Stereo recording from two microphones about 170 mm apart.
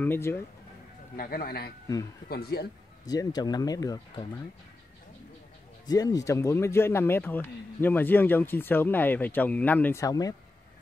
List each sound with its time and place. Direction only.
0.0 s speech: 15° left (ahead or behind)
1.1 s a man's voice: 60° left (ahead or behind)
3.1 s speech: 25° left (ahead or behind)
5.9 s speech: 20° left (ahead or behind)